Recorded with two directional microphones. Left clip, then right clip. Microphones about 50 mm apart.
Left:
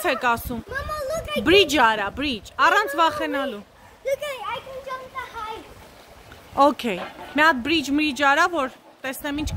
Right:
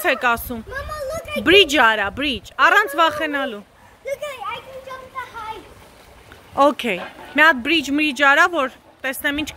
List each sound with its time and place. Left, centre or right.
0.0 s a woman's voice: centre
0.7 s a sound: left
1.4 s a woman's voice: centre
6.6 s speech: centre
8.1 s speech: centre